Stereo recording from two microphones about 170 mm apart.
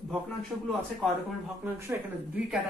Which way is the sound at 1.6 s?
10° right (ahead or behind).